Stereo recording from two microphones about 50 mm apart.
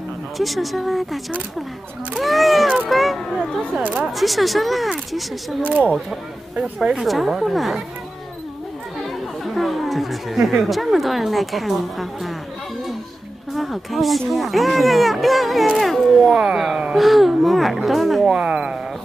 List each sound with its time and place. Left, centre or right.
0.4 s speech: centre
2.9 s single-lens reflex camera: centre
3.8 s speech: right
4.1 s speech: centre
5.6 s speech: right
6.5 s speech: centre
7.0 s speech: centre
9.4 s speech: centre
13.5 s speech: centre
18.2 s speech: centre